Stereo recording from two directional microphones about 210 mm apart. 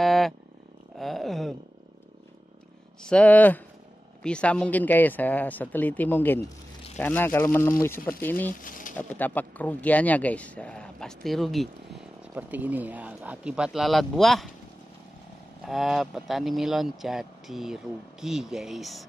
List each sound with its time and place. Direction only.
0.0 s roaring cats: centre (ahead or behind)
0.9 s a sound: centre (ahead or behind)
3.0 s speech: 5° left (ahead or behind)
8.5 s pigeon: 40° left (ahead or behind)
8.9 s speech: 10° left (ahead or behind)
15.6 s speech: centre (ahead or behind)